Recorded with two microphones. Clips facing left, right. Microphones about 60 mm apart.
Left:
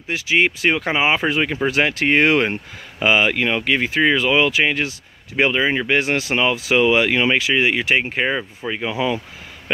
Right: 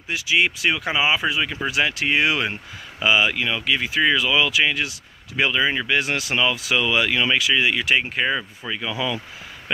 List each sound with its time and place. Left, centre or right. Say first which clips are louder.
0.1 s speech: left 3 dB; left